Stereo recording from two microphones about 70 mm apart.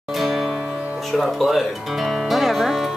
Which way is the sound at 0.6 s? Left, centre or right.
Centre.